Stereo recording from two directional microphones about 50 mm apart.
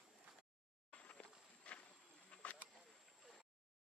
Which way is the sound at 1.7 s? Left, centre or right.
Left.